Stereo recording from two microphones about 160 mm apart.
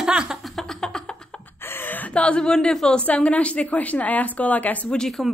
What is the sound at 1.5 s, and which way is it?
Speech, 15° left (ahead or behind).